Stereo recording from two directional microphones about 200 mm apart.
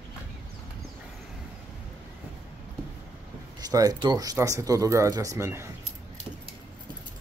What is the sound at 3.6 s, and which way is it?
Speech, 20° right (ahead or behind).